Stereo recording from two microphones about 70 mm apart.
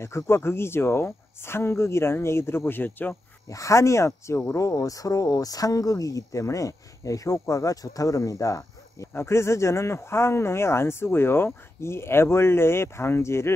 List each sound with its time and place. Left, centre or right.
0.0 s speech: left
3.4 s speech: left
4.6 s speech: left
9.1 s speech: left